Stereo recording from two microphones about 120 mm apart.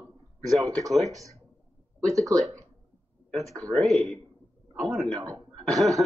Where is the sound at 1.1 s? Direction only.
25° right (ahead or behind).